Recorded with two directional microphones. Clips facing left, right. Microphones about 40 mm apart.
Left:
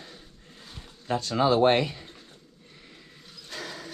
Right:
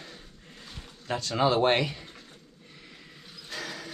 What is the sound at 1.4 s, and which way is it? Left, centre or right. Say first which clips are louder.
Speech: left 2 dB; right.